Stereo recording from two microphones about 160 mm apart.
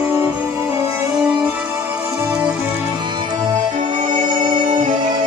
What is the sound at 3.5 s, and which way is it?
Music, 50° right (ahead or behind).